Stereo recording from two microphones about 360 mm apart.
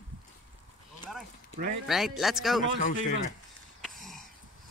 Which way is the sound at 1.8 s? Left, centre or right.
Centre.